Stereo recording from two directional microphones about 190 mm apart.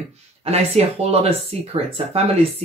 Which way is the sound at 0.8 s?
35° right (ahead or behind).